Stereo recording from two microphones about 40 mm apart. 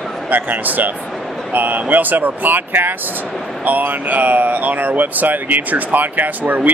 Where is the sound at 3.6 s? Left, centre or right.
Right.